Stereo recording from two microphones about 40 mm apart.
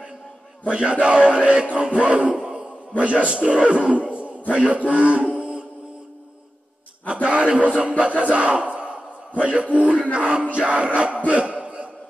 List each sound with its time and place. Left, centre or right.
0.7 s a man's voice: right
7.2 s a man's voice: right
11.0 s a sound: right